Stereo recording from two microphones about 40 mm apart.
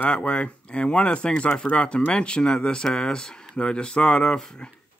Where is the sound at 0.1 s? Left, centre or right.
Left.